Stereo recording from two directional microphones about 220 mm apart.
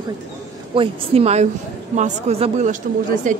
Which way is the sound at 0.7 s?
25° right (ahead or behind).